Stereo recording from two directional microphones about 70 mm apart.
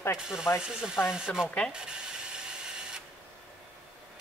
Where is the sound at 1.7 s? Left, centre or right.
Centre.